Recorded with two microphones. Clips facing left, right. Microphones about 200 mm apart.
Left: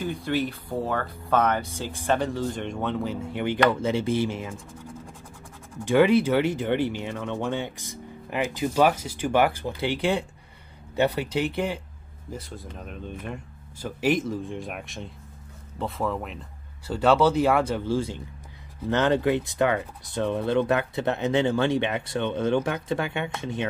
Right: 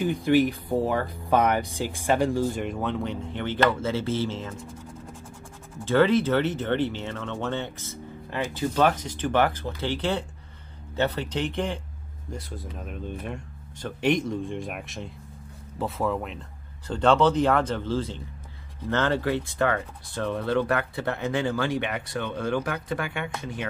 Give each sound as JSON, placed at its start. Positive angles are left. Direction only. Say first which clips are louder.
{"t": 0.0, "sound": "speech", "louder": "right 6 dB", "side_deg": -15}
{"t": 5.9, "sound": "speech", "louder": "left 1 dB", "side_deg": 15}